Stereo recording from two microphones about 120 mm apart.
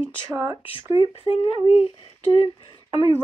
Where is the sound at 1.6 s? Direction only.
55° left (ahead or behind).